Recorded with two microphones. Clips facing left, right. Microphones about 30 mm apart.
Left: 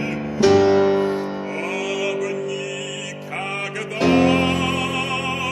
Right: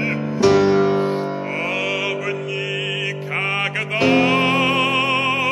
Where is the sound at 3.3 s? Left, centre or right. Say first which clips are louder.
Right 5 dB; right.